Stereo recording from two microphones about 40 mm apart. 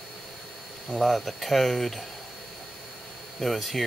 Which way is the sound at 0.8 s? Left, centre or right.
Centre.